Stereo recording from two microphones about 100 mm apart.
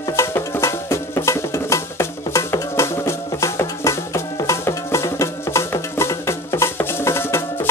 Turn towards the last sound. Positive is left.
turn(degrees=25)  # may be behind; listen again after turning